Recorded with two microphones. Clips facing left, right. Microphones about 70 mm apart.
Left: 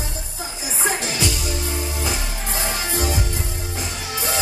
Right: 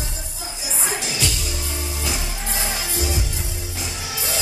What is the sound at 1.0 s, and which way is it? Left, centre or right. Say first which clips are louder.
Music: left 2 dB; left.